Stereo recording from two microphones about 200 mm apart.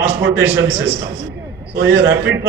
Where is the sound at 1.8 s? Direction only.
65° right (ahead or behind).